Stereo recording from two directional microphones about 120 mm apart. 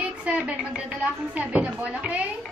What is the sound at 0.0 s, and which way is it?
Speech, 10° right (ahead or behind).